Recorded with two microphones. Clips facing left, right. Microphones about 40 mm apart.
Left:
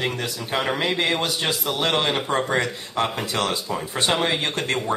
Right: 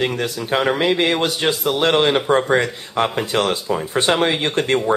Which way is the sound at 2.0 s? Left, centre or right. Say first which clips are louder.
Right 6 dB; right.